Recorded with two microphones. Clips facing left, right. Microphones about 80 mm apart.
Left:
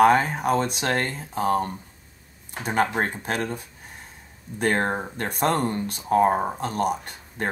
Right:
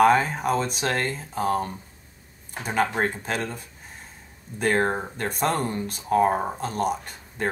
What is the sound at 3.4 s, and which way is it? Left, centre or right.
Speech, centre.